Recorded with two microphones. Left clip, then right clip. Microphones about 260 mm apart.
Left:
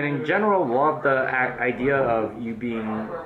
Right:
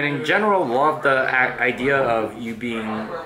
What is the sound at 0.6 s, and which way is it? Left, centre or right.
Speech, left.